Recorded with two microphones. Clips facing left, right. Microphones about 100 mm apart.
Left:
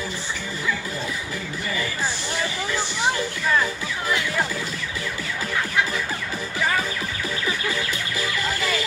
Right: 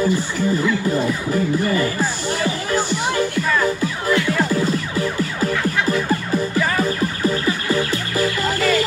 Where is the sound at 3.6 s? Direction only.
45° right (ahead or behind).